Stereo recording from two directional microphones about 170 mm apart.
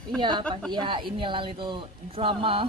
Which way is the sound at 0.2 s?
25° right (ahead or behind).